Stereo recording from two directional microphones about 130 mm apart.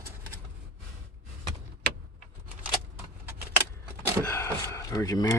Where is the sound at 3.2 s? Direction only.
15° right (ahead or behind).